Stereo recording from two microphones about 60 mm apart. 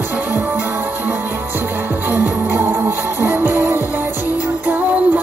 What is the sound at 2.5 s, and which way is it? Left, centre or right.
Music, right.